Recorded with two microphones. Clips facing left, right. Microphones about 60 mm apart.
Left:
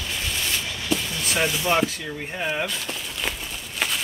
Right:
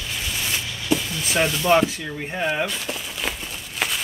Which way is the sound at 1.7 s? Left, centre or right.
Centre.